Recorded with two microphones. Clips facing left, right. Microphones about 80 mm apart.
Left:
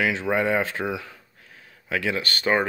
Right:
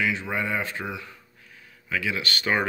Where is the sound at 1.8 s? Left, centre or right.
Left.